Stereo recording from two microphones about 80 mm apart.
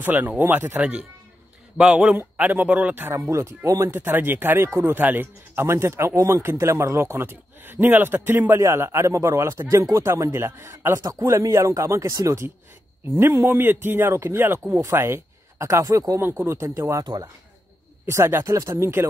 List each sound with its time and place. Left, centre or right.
0.0 s speech: right
0.7 s speech: centre
3.2 s speech: right
4.0 s speech: right
8.5 s speech: right
17.0 s speech: right
18.0 s speech: right